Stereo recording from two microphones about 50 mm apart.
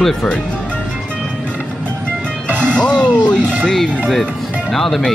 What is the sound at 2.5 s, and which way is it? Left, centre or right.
Music, right.